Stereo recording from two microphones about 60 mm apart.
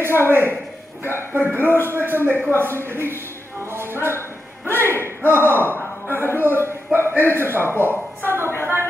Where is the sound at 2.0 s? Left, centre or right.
Right.